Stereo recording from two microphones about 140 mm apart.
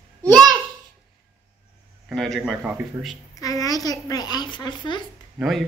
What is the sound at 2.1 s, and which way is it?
A man's voice, centre (ahead or behind).